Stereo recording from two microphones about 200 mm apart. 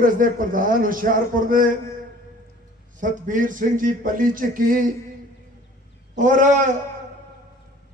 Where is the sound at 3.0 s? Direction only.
40° right (ahead or behind).